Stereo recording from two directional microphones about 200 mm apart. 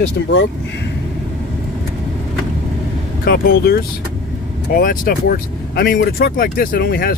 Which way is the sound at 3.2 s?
45° left (ahead or behind).